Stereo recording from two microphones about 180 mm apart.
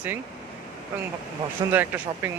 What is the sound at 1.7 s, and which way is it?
Speech, 10° right (ahead or behind).